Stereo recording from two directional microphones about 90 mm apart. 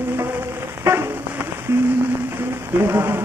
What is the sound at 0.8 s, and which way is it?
Rain on surface, 25° right (ahead or behind).